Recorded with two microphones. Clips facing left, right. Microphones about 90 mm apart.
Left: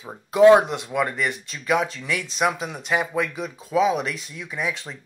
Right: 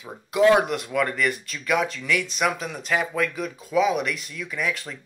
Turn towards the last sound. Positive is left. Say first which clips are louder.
# even
turn(degrees=25)  # may be behind; listen again after turning